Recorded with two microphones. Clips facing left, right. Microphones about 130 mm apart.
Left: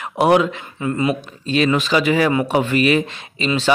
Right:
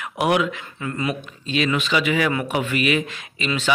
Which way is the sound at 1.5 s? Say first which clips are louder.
Left 5 dB; 40° left (ahead or behind).